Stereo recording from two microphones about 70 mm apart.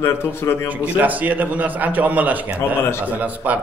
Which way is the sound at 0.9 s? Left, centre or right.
Right.